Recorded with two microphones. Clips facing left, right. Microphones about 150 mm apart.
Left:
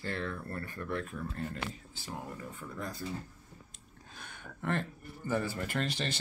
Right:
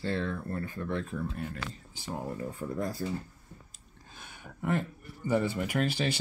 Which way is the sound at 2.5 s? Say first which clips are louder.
Right 8 dB; 35° right (ahead or behind).